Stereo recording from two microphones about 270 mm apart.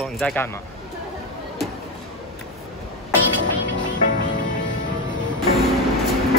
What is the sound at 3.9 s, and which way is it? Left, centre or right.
Music, left.